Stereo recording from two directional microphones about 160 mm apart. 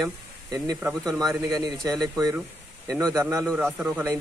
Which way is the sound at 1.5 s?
25° right (ahead or behind).